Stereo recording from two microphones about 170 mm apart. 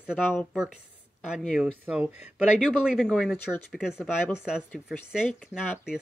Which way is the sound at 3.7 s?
5° right (ahead or behind).